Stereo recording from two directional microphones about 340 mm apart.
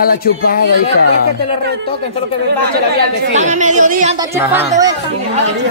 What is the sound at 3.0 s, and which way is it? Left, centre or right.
A woman's voice, right.